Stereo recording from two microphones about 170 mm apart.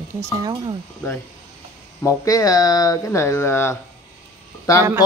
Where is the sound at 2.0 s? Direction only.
20° left (ahead or behind).